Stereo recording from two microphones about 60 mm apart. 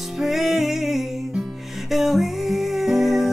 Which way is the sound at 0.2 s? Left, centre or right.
Centre.